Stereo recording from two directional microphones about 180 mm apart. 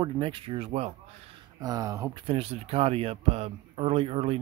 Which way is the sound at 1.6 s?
20° right (ahead or behind).